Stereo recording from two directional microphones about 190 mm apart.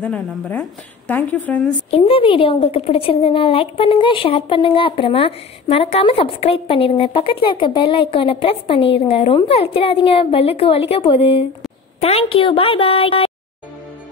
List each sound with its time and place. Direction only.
0.0 s a woman's voice: 5° left (ahead or behind)
1.9 s a woman's voice: 30° left (ahead or behind)